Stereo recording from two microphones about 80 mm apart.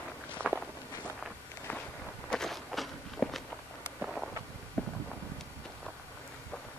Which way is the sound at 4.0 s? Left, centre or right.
Centre.